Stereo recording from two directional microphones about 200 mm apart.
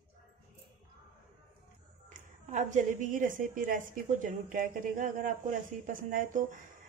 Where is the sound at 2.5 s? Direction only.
35° right (ahead or behind).